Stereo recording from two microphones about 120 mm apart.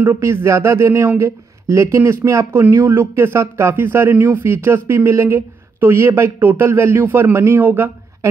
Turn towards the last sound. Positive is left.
turn(degrees=-15)  # may be behind; listen again after turning